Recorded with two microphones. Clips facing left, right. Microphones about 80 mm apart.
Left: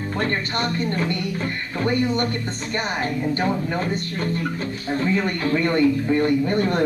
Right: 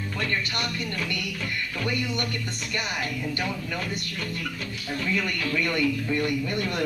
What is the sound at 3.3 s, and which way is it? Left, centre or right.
Speech, left.